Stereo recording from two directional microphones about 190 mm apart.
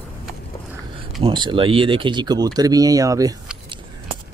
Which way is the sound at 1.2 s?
25° right (ahead or behind).